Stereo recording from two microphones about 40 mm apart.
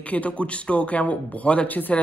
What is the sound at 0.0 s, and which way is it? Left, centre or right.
Speech, left.